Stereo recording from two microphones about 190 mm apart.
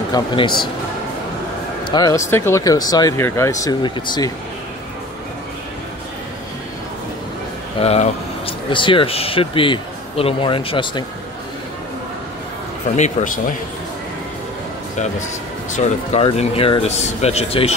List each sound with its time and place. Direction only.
0.1 s speech: 25° left (ahead or behind)
1.9 s speech: 20° left (ahead or behind)
7.8 s speech: 30° left (ahead or behind)
12.9 s speech: 40° left (ahead or behind)
15.7 s speech: 35° left (ahead or behind)